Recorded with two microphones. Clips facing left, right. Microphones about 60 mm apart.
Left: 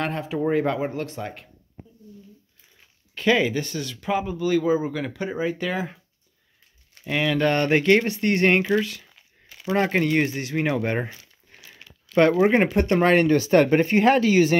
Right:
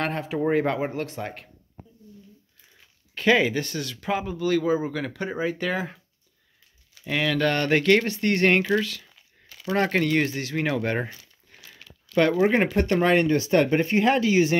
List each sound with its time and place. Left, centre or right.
0.0 s speech: centre
3.2 s speech: centre
7.1 s speech: centre
7.3 s speech: left
9.7 s speech: centre
11.8 s speech: left
13.0 s speech: left